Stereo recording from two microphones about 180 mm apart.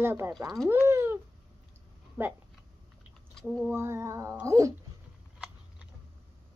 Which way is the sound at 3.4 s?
Centre (ahead or behind).